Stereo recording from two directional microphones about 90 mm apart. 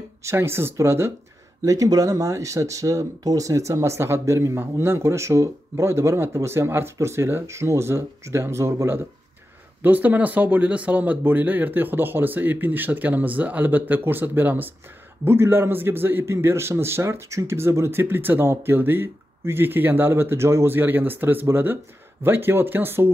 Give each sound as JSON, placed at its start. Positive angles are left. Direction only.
{"t": 0.2, "sound": "a man's voice", "side_deg": -30}
{"t": 1.6, "sound": "a man's voice", "side_deg": -40}